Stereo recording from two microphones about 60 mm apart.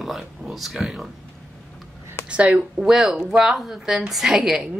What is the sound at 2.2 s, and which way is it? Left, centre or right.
Speech, centre.